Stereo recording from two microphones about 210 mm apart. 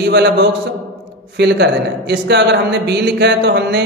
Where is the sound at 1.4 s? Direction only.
55° right (ahead or behind).